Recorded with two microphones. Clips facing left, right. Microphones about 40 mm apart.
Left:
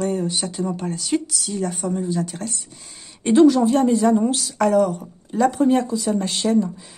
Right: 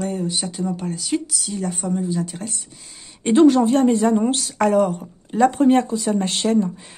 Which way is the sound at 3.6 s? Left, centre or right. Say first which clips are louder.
Right 1 dB; right.